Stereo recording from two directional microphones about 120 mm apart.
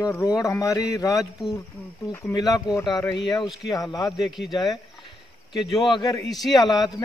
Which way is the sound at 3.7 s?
30° left (ahead or behind).